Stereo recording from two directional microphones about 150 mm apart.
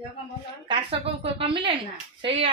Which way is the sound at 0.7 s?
40° right (ahead or behind).